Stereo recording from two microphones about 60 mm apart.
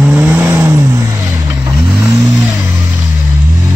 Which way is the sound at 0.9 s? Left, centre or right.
Right.